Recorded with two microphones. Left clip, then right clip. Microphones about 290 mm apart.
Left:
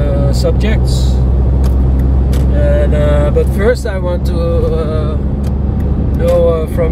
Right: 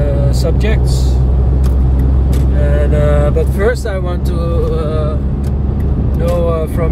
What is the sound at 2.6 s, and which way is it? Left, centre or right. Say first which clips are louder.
Speech: left 2 dB; centre.